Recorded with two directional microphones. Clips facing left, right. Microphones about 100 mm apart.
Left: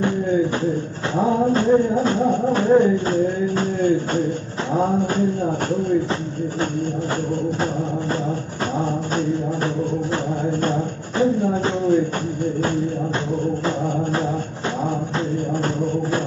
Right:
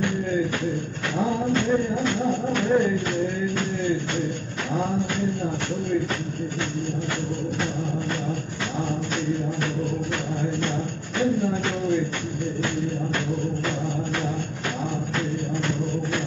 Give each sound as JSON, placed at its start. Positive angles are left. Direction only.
{"t": 0.0, "sound": "speech", "side_deg": 30}
{"t": 1.1, "sound": "music", "side_deg": 35}
{"t": 4.7, "sound": "speech", "side_deg": 35}
{"t": 10.4, "sound": "a sound", "side_deg": 35}
{"t": 15.1, "sound": "music", "side_deg": 35}